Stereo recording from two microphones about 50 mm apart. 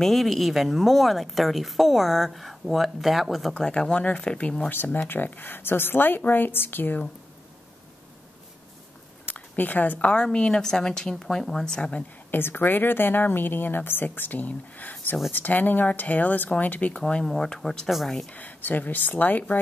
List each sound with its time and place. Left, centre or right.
0.0 s speech: centre
3.5 s speech: centre
4.8 s speech: left
9.2 s a sound: left
9.9 s a woman's voice: left
12.3 s speech: left
17.0 s a woman's voice: centre
18.3 s speech: left